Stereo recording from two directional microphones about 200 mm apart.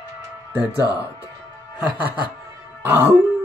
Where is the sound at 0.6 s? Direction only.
20° left (ahead or behind).